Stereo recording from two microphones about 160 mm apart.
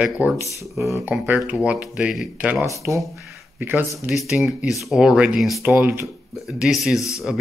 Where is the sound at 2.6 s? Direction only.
20° right (ahead or behind).